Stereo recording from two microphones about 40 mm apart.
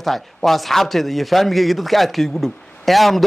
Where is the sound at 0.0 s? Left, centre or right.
Centre.